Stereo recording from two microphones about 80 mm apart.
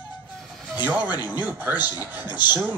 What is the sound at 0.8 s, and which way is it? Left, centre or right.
Speech, right.